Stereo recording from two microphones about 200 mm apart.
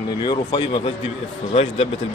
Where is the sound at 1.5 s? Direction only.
30° left (ahead or behind).